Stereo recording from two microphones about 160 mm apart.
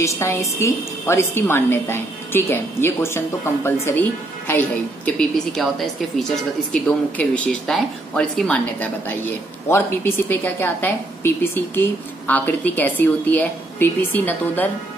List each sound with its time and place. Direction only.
0.0 s a woman's voice: 15° left (ahead or behind)